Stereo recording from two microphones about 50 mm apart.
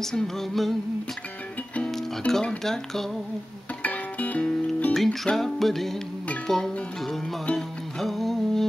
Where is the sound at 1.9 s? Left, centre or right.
Centre.